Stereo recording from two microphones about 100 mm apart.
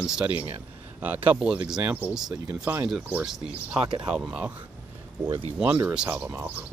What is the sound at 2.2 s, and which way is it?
Speech, 30° right (ahead or behind).